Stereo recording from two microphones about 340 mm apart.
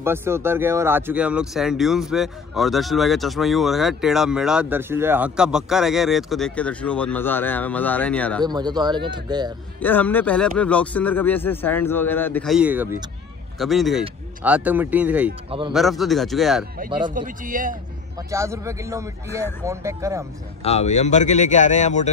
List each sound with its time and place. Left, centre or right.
0.0 s speech: centre
8.4 s speech: centre
9.8 s speech: centre
17.0 s speech: right
18.3 s speech: centre
20.6 s speech: centre